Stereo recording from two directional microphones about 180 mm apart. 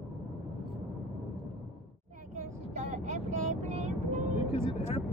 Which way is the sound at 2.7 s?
45° right (ahead or behind).